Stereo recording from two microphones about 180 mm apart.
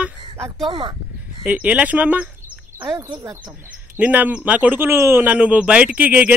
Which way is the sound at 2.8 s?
20° right (ahead or behind).